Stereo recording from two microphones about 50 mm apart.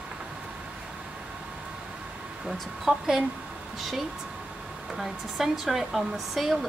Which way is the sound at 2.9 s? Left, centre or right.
Centre.